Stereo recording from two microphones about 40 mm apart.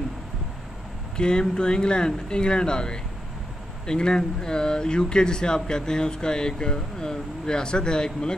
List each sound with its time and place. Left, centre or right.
1.1 s speech: left